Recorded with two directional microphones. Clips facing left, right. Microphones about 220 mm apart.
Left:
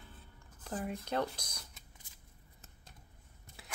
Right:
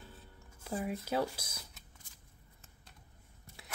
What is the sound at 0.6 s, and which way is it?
Speech, 10° right (ahead or behind).